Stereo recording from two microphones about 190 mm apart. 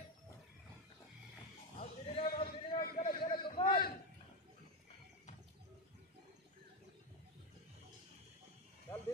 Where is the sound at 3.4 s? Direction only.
25° left (ahead or behind).